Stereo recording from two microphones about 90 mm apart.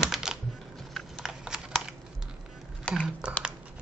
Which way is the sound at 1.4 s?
10° right (ahead or behind).